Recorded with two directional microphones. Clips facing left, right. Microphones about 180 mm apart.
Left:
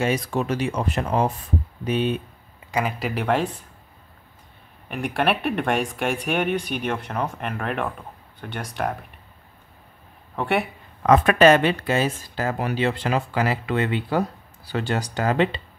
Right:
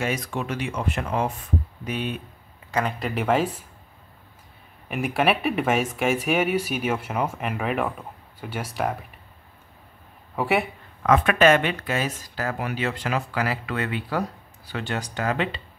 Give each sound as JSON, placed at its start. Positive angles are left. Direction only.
{"t": 0.0, "sound": "speech", "side_deg": 30}
{"t": 2.7, "sound": "speech", "side_deg": 5}
{"t": 4.8, "sound": "speech", "side_deg": -5}
{"t": 10.3, "sound": "speech", "side_deg": 0}
{"t": 11.0, "sound": "speech", "side_deg": 35}